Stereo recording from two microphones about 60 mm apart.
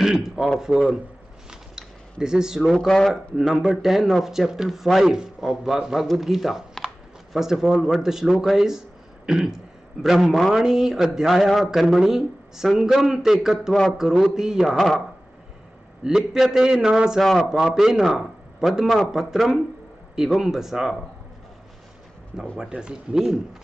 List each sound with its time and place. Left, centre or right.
0.0 s a man's voice: centre
1.5 s a sound: centre
2.6 s speech: centre
3.3 s a man's voice: centre
16.0 s a man's voice: centre
22.6 s a man's voice: centre